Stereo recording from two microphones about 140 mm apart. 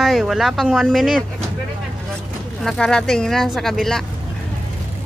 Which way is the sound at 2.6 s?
5° left (ahead or behind).